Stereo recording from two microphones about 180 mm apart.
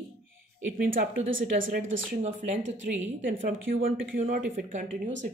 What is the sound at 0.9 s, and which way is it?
A woman's voice, 50° right (ahead or behind).